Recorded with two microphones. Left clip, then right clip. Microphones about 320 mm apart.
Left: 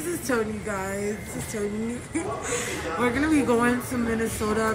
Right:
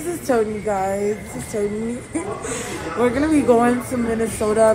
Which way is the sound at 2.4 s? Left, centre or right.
Centre.